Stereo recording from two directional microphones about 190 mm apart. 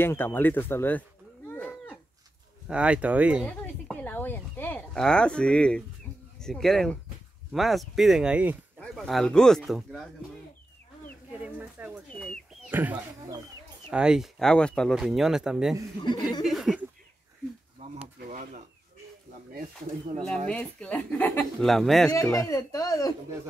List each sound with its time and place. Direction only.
0.0 s speech: 10° left (ahead or behind)
1.5 s livestock: 10° left (ahead or behind)
2.7 s speech: 5° right (ahead or behind)
3.4 s speech: 5° left (ahead or behind)
11.3 s a sound: 5° right (ahead or behind)
12.1 s chicken: 5° left (ahead or behind)
13.8 s speech: 5° right (ahead or behind)
16.0 s speech: 20° left (ahead or behind)
16.4 s a sound: centre (ahead or behind)
18.3 s a sound: 45° right (ahead or behind)
20.4 s speech: 5° left (ahead or behind)
22.1 s speech: 15° left (ahead or behind)